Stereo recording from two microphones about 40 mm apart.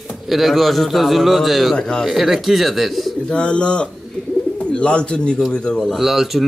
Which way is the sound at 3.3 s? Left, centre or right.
Left.